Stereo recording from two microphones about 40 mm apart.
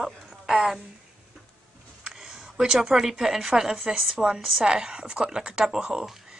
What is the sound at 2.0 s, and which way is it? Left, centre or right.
Speech, centre.